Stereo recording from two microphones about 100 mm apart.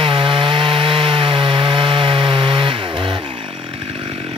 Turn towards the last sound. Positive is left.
turn(degrees=-60)  # may be behind; listen again after turning